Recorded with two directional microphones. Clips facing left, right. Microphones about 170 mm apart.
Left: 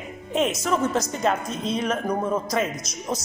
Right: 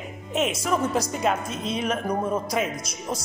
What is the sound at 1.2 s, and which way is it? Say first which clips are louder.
Speech: left 1 dB; 5° right (ahead or behind).